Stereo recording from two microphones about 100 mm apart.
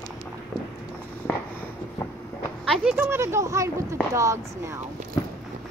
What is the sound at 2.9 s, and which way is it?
Speech, 25° right (ahead or behind).